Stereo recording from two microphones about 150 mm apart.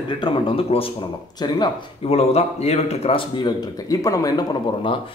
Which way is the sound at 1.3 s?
30° left (ahead or behind).